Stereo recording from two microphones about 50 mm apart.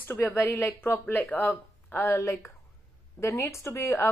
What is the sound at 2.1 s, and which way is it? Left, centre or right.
A woman's voice, left.